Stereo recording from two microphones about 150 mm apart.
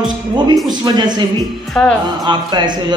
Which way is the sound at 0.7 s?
30° right (ahead or behind).